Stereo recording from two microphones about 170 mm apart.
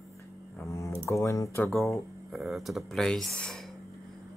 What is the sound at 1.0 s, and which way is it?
Speech, 15° left (ahead or behind).